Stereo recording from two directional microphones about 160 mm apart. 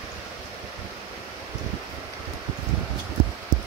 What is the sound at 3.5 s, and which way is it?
Rain on surface, 25° right (ahead or behind).